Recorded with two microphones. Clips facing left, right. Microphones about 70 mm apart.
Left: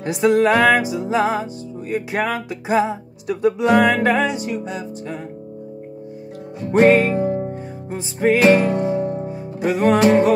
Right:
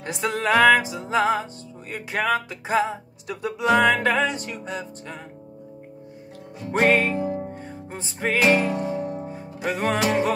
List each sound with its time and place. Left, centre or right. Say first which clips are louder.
0.0 s music: left 10 dB; centre
6.8 s music: left 6 dB; centre
7.2 s music: left 6 dB; left
8.0 s music: left 9 dB; centre
8.4 s music: left 4 dB; left
9.7 s music: left 7 dB; centre
9.9 s music: left 8 dB; left